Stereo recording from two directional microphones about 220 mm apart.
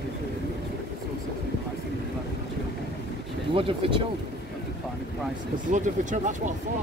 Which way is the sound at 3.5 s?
25° right (ahead or behind).